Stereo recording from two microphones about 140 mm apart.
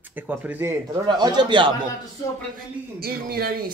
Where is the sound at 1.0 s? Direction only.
35° right (ahead or behind).